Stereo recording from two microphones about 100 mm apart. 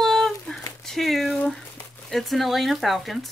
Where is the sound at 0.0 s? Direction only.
Centre (ahead or behind).